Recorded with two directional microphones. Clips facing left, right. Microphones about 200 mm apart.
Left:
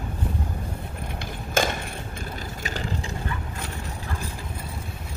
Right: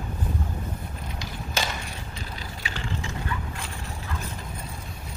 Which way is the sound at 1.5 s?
50° left (ahead or behind).